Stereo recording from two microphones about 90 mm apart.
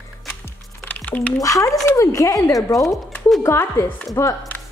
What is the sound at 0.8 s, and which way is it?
Typing, 20° left (ahead or behind).